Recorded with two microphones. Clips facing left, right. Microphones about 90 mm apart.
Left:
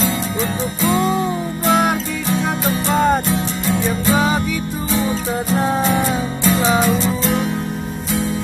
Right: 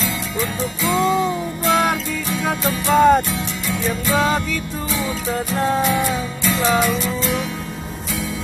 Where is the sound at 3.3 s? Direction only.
30° left (ahead or behind).